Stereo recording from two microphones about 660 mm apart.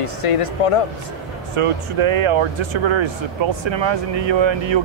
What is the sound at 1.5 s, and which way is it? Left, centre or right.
Speech, right.